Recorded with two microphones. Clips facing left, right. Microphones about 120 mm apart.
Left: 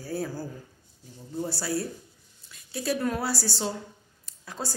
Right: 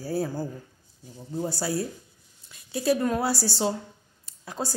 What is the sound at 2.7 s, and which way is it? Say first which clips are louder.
Speech: right 4 dB; 25° right (ahead or behind).